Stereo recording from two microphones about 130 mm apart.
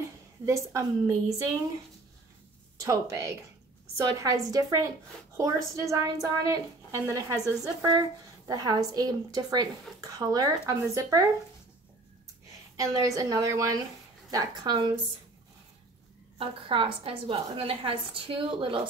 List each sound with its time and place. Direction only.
0.5 s a woman's voice: 25° right (ahead or behind)
2.8 s a woman's voice: 25° right (ahead or behind)
12.7 s a woman's voice: 25° right (ahead or behind)
16.3 s a woman's voice: 45° right (ahead or behind)